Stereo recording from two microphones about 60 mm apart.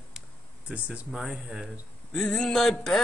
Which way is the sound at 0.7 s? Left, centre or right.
Right.